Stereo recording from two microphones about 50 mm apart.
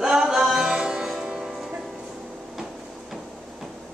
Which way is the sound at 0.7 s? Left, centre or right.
Centre.